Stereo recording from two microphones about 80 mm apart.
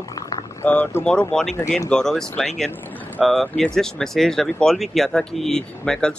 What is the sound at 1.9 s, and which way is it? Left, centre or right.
Speech, centre.